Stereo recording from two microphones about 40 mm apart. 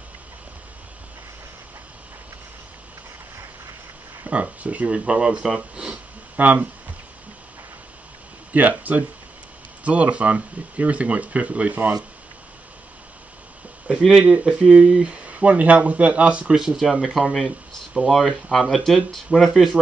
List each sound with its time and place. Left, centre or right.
4.3 s speech: right; by 5.6 s centre
6.3 s speech: right
8.5 s speech: right
13.8 s speech: right
16.5 s speech: centre